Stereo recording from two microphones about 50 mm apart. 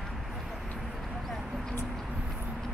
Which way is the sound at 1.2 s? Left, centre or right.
Centre.